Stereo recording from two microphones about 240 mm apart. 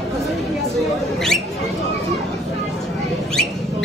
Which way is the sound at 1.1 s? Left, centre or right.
Centre.